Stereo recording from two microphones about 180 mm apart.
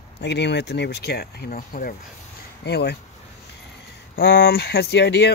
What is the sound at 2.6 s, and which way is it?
Speech, 65° left (ahead or behind).